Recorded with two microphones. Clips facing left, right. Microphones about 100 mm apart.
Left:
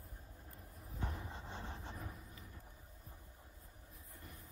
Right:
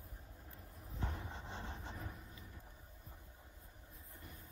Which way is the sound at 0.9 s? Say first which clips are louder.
Even; 5° left (ahead or behind).